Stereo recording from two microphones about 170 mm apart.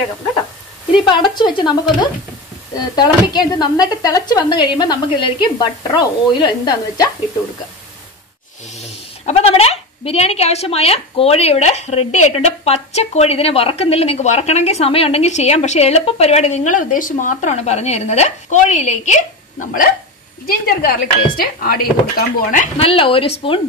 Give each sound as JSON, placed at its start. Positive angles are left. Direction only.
{"t": 1.0, "sound": "a woman's voice", "side_deg": 25}
{"t": 8.7, "sound": "speech", "side_deg": 40}
{"t": 22.8, "sound": "speech", "side_deg": 35}